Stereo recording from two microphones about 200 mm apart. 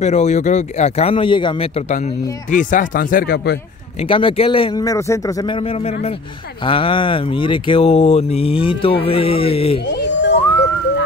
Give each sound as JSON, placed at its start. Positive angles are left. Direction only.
{"t": 0.0, "sound": "speech", "side_deg": 35}
{"t": 4.1, "sound": "speech", "side_deg": 25}
{"t": 9.8, "sound": "a sound", "side_deg": 60}